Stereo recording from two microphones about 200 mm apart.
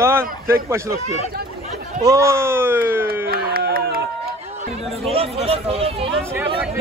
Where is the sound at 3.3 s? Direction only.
50° right (ahead or behind).